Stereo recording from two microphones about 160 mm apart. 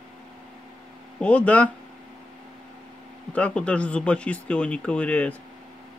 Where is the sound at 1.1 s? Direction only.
10° left (ahead or behind).